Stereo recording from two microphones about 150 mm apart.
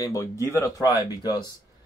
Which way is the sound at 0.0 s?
20° left (ahead or behind).